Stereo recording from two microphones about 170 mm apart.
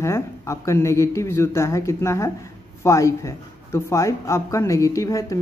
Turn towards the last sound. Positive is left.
turn(degrees=20)  # may be behind; listen again after turning